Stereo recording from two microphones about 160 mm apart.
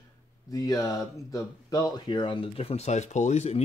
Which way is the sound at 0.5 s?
20° left (ahead or behind).